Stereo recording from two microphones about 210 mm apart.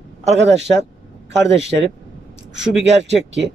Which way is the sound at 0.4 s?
55° right (ahead or behind).